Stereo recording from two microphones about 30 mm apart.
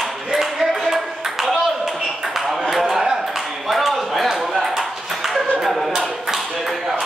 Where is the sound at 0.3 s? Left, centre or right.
Centre.